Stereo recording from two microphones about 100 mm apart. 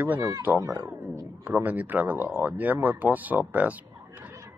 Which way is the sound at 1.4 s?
15° right (ahead or behind).